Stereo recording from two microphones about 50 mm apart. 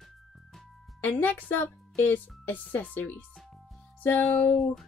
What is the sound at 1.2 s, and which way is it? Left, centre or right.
Speech, left.